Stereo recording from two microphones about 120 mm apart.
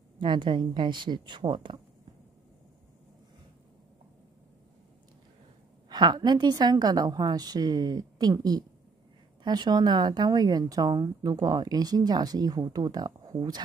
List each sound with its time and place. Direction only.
0.2 s speech: 40° right (ahead or behind)
5.9 s speech: 35° right (ahead or behind)